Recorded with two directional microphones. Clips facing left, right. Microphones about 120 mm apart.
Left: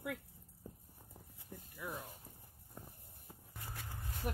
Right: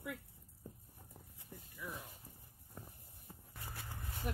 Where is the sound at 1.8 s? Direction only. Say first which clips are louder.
Left 3 dB; 45° left (ahead or behind).